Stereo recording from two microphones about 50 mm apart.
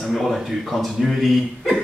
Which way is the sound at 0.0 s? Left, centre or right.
Centre.